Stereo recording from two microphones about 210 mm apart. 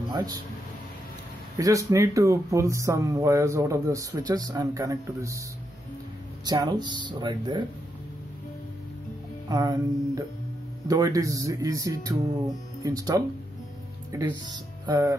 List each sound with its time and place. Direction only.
0.1 s speech: 20° right (ahead or behind)
1.6 s speech: 15° right (ahead or behind)
6.4 s speech: 20° right (ahead or behind)
9.5 s speech: 15° right (ahead or behind)